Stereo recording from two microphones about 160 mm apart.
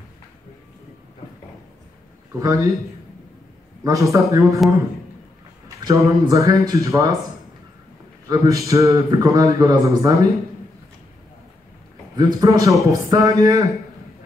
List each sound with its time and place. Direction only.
2.4 s a man's voice: 20° right (ahead or behind)
3.8 s a man's voice: 20° right (ahead or behind)
5.9 s a man's voice: 20° right (ahead or behind)
8.3 s a man's voice: 20° right (ahead or behind)
12.2 s a man's voice: 25° right (ahead or behind)